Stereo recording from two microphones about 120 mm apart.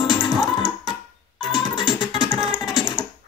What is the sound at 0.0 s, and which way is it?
Music, 40° left (ahead or behind).